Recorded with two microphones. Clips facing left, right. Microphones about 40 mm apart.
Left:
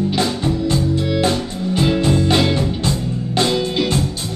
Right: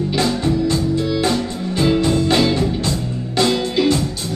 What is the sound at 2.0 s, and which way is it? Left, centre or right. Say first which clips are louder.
Music: even; left.